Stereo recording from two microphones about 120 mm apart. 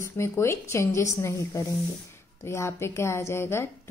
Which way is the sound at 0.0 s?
20° left (ahead or behind).